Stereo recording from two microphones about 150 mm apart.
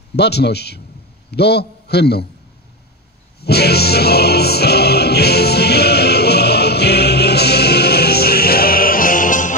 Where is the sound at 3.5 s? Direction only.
90° left.